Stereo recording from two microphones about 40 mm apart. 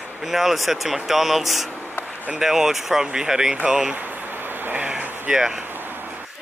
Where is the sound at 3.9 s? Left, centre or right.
Right.